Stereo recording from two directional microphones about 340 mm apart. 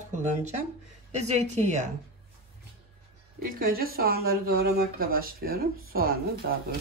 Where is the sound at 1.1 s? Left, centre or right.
Centre.